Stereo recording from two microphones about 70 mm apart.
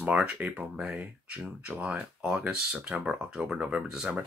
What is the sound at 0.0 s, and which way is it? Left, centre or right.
Speech, centre.